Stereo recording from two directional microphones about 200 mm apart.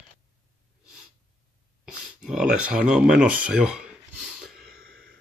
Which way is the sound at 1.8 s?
5° right (ahead or behind).